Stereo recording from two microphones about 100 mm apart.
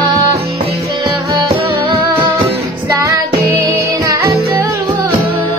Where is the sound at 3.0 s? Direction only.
35° right (ahead or behind).